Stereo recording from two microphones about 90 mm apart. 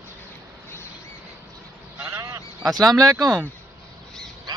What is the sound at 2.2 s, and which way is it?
Honk, 45° right (ahead or behind).